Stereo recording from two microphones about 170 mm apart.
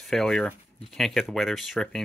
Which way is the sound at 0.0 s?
Centre (ahead or behind).